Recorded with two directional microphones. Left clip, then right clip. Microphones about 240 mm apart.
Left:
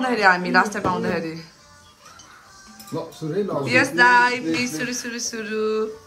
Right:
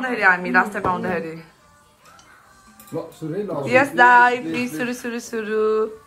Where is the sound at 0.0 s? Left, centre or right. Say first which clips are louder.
Even; centre.